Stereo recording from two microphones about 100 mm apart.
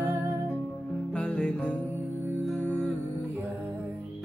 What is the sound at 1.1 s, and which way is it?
Music, 10° left (ahead or behind).